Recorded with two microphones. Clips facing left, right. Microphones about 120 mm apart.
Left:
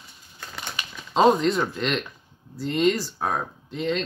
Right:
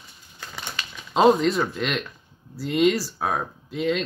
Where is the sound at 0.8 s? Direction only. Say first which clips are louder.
Even; 15° left (ahead or behind).